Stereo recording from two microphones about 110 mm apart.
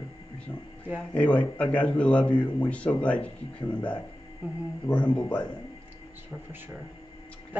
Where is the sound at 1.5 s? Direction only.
10° left (ahead or behind).